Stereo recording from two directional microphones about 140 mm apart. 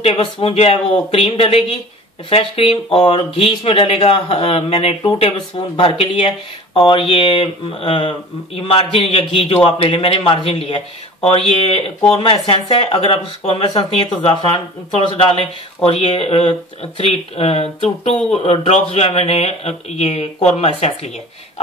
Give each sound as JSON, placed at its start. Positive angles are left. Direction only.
{"t": 0.0, "sound": "speech", "side_deg": 40}